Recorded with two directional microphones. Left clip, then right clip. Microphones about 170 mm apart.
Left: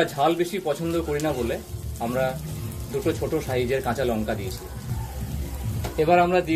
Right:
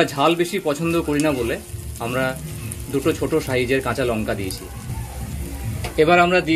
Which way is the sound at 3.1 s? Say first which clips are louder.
Right 5 dB; 55° right (ahead or behind).